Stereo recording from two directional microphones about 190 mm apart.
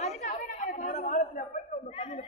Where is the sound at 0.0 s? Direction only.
40° left (ahead or behind).